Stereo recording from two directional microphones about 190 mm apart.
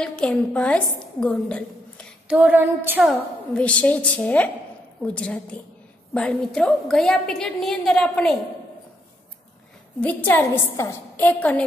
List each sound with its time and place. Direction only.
0.0 s a woman's voice: 5° left (ahead or behind)
2.2 s a sound: 10° right (ahead or behind)
3.0 s a woman's voice: 5° left (ahead or behind)
9.9 s a woman's voice: 10° left (ahead or behind)